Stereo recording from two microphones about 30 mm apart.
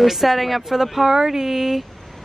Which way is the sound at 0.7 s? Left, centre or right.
Centre.